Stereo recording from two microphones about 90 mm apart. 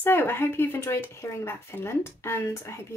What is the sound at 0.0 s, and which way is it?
A woman's voice, 25° left (ahead or behind).